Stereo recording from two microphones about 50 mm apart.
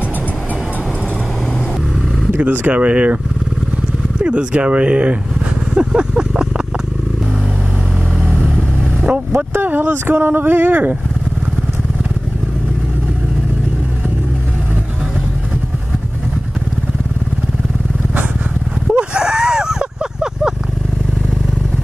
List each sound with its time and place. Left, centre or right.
2.4 s speech: right
4.2 s speech: right
5.8 s vehicle: centre
8.5 s vehicle: right
9.5 s speech: right
18.9 s a sound: centre